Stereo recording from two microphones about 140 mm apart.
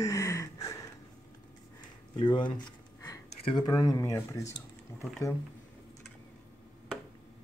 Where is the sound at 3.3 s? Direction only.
40° left (ahead or behind).